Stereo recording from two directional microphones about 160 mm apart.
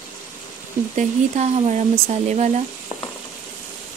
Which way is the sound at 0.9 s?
45° right (ahead or behind).